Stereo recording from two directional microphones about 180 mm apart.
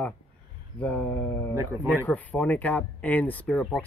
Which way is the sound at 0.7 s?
10° left (ahead or behind).